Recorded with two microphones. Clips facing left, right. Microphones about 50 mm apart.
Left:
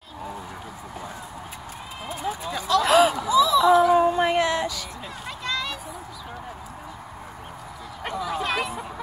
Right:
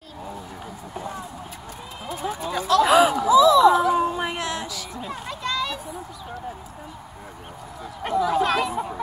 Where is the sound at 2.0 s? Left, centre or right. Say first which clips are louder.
Right 1 dB; centre.